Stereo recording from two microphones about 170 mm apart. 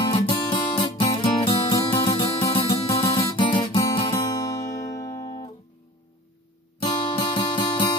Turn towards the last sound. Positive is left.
turn(degrees=30)  # may be behind; listen again after turning